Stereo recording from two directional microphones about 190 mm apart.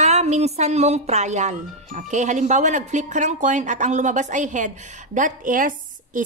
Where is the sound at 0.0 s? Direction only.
35° right (ahead or behind).